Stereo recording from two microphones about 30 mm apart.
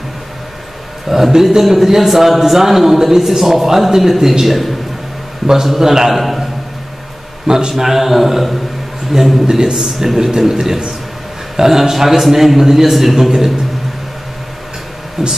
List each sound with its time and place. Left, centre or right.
1.0 s a man's voice: centre
7.4 s a man's voice: centre
7.7 s a man's voice: centre
15.2 s a man's voice: centre